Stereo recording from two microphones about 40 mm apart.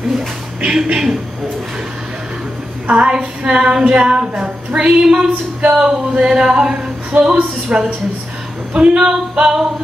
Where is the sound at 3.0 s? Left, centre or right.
Right.